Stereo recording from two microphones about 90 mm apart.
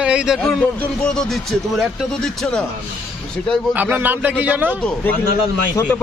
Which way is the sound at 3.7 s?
20° right (ahead or behind).